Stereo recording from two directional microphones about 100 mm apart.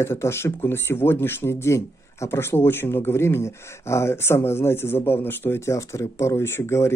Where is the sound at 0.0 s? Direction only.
25° left (ahead or behind).